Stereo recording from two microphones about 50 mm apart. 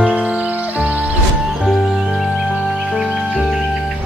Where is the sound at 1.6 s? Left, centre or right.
Centre.